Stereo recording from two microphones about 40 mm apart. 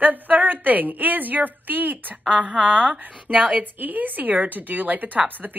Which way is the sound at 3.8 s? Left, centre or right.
Right.